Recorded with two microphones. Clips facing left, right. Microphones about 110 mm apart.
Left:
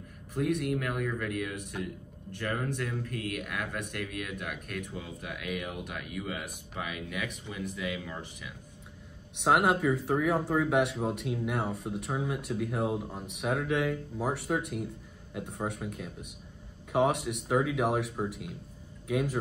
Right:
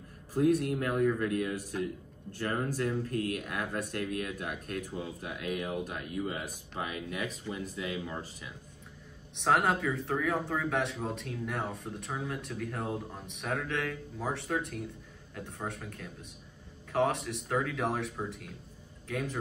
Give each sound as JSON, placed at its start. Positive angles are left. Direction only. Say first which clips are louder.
{"t": 0.3, "sound": "speech", "louder": "right 3 dB", "side_deg": -30}
{"t": 9.4, "sound": "speech", "louder": "left 2 dB", "side_deg": 10}